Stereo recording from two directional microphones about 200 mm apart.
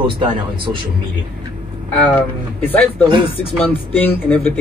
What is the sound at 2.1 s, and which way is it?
Speech, 10° left (ahead or behind).